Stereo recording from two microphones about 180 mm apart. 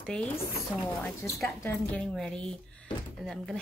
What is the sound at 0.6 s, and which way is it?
Speech, 15° left (ahead or behind).